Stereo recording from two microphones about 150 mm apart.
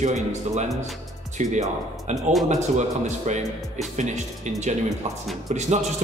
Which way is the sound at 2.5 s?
50° right (ahead or behind).